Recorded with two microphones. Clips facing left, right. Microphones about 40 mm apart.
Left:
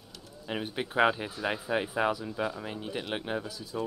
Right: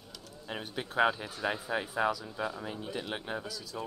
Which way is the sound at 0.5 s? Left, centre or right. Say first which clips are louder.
Left 5 dB; left.